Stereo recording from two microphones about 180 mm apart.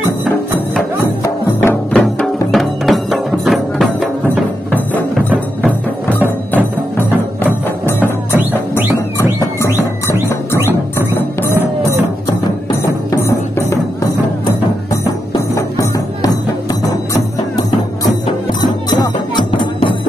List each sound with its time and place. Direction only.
1.6 s music: 10° left (ahead or behind)
6.0 s music: 10° left (ahead or behind)
8.4 s music: 10° right (ahead or behind)
13.1 s music: 15° left (ahead or behind)
15.5 s music: 20° left (ahead or behind)
19.6 s music: 30° left (ahead or behind)